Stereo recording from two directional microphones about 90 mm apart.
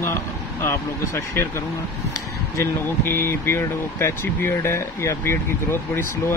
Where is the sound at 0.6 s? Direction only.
30° left (ahead or behind).